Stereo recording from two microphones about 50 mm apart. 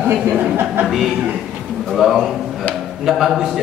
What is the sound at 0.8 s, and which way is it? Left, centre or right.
A man's voice, centre.